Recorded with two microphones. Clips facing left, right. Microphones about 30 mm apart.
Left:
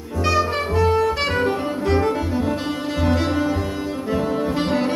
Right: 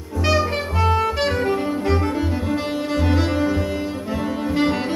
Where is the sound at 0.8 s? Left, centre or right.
Centre.